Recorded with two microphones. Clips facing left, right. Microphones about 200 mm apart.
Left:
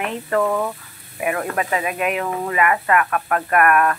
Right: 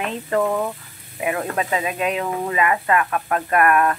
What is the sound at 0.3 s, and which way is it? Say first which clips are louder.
Speech: left 1 dB; 15° right (ahead or behind).